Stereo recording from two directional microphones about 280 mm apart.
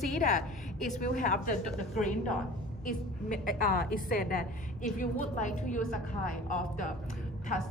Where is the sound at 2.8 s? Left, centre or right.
Left.